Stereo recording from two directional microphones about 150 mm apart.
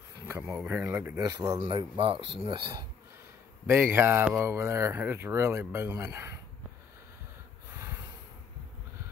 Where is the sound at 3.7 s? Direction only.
15° right (ahead or behind).